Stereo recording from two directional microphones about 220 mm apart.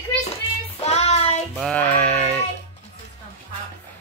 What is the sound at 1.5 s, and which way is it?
Speech, 5° left (ahead or behind).